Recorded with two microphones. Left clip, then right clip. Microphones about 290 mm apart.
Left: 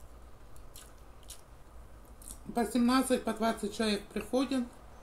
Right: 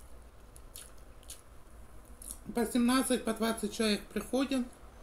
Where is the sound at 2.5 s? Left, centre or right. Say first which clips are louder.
Left 1 dB; centre.